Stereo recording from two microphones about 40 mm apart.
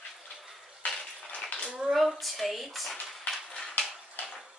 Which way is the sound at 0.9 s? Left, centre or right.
Centre.